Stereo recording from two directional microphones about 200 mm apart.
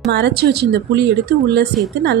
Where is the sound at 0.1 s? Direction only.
55° right (ahead or behind).